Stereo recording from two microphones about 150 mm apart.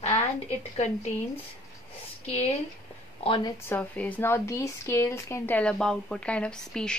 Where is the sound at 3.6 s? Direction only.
10° left (ahead or behind).